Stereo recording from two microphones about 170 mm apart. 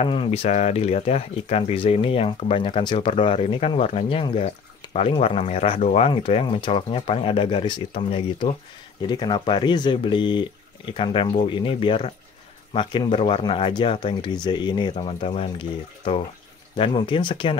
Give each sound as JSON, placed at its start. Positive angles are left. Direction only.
{"t": 0.0, "sound": "speech", "side_deg": 35}
{"t": 16.7, "sound": "speech", "side_deg": 30}